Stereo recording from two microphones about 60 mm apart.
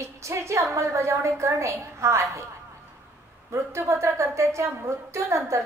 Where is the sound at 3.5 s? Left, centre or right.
Right.